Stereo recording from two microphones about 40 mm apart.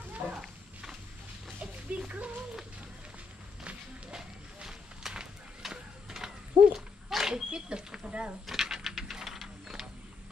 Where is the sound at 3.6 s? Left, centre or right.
Right.